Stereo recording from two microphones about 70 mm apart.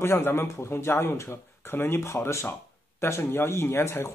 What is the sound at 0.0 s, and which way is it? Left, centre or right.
Speech, left.